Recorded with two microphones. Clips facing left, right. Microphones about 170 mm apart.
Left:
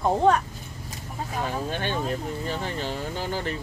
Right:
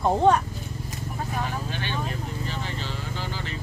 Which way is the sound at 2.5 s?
50° left (ahead or behind).